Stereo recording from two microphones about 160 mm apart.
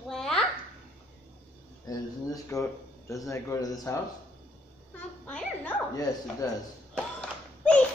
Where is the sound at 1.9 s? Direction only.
20° left (ahead or behind).